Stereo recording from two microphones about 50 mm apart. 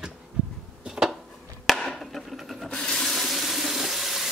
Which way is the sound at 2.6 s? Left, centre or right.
Left.